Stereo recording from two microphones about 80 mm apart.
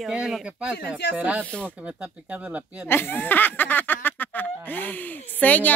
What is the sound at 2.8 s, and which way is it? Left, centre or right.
Speech, left.